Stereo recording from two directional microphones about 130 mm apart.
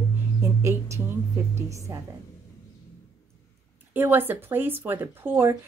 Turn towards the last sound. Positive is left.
turn(degrees=-20)  # may be behind; listen again after turning